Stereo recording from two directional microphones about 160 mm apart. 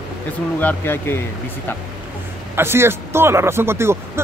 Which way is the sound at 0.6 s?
10° left (ahead or behind).